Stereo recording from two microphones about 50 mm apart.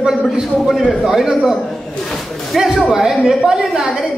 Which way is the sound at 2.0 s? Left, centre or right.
Centre.